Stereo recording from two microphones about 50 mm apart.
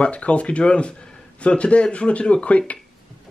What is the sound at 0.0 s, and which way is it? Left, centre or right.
Speech, left.